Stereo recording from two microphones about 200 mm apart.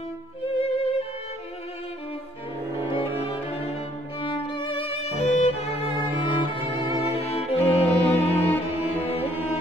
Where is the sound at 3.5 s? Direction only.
25° left (ahead or behind).